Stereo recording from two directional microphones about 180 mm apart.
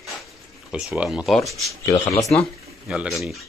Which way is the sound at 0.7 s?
5° right (ahead or behind).